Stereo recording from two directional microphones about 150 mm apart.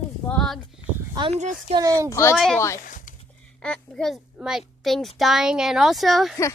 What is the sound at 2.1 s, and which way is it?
Speech, 20° left (ahead or behind).